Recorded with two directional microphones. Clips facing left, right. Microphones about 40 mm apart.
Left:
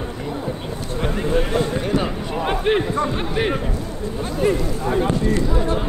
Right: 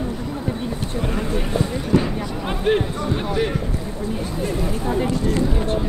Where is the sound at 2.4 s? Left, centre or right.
Left.